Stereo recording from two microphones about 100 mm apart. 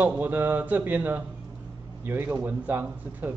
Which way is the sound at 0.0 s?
20° right (ahead or behind).